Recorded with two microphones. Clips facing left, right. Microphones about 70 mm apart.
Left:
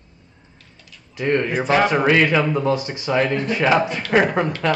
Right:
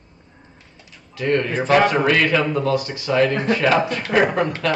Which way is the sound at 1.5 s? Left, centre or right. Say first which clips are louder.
Right 4 dB; centre.